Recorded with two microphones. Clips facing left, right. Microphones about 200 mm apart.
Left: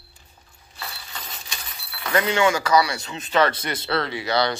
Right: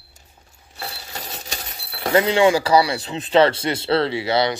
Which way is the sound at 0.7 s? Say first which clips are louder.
Right 4 dB; 40° right (ahead or behind).